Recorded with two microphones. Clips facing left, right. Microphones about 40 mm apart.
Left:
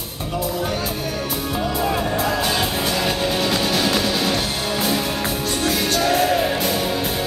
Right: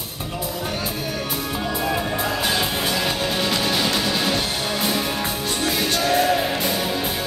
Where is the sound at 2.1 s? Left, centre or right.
Centre.